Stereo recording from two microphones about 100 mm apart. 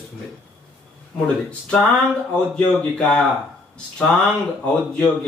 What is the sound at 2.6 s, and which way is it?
Speech, 15° left (ahead or behind).